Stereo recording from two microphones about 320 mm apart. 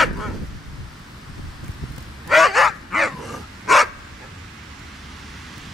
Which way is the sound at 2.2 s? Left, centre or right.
Centre.